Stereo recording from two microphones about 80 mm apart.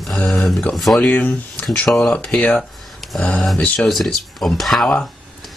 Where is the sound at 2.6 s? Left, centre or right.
Centre.